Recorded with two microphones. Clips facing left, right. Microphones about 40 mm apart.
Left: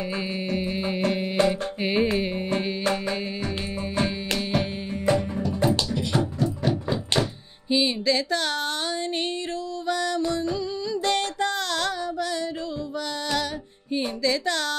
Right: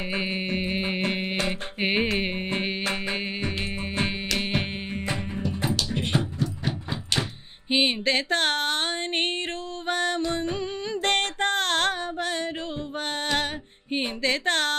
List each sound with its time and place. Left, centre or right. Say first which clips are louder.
0.1 s music: even; right
5.0 s music: left 9 dB; centre
6.6 s a sound: left 6 dB; centre
7.7 s music: even; right
13.0 s female singing: right 2 dB; right
13.9 s a sound: left 1 dB; right